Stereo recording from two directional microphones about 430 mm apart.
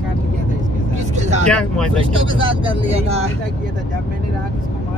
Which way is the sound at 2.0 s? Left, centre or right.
Centre.